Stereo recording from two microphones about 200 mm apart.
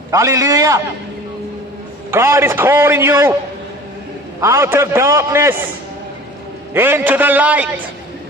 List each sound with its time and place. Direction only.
0.1 s a man's voice: 15° right (ahead or behind)
2.0 s a man's voice: 15° right (ahead or behind)
4.4 s a man's voice: 15° right (ahead or behind)
6.7 s a man's voice: 10° right (ahead or behind)